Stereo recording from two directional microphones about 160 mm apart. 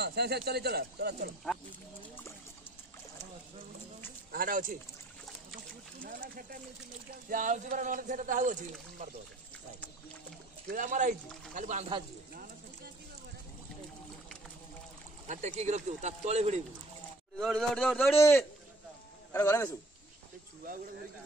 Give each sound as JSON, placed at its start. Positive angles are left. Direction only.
{"t": 0.0, "sound": "speech", "side_deg": -90}
{"t": 4.3, "sound": "speech", "side_deg": -60}
{"t": 6.0, "sound": "speech", "side_deg": -60}
{"t": 10.7, "sound": "speech", "side_deg": -55}
{"t": 15.2, "sound": "speech", "side_deg": -45}
{"t": 17.4, "sound": "a sound", "side_deg": 5}
{"t": 18.1, "sound": "a man's voice", "side_deg": 15}